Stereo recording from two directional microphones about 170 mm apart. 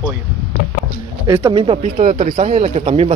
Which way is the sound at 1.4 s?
30° right (ahead or behind).